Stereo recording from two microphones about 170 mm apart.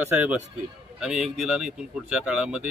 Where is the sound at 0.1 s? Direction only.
10° right (ahead or behind).